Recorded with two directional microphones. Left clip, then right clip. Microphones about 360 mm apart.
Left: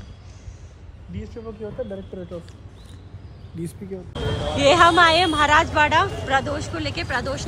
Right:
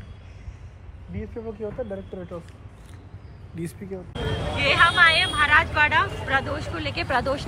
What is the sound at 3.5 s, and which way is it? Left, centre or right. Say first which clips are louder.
Speech: left 1 dB; centre.